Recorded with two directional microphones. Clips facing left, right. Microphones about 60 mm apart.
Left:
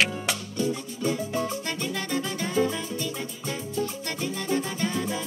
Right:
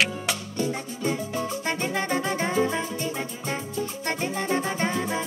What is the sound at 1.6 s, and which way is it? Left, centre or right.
Music, right.